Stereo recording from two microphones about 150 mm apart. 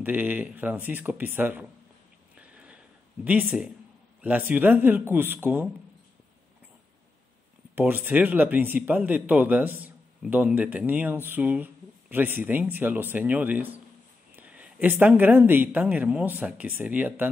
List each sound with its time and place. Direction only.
0.0 s speech: 10° right (ahead or behind)
2.3 s a sound: 10° right (ahead or behind)
3.3 s speech: 10° right (ahead or behind)
7.7 s speech: 15° right (ahead or behind)